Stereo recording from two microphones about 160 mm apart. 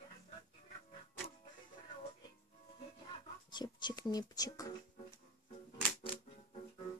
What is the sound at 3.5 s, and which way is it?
Speech, 30° left (ahead or behind).